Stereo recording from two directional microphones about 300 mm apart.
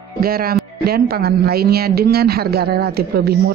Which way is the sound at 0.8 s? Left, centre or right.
Right.